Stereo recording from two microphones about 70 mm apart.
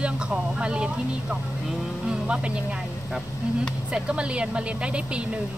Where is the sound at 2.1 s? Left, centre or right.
Centre.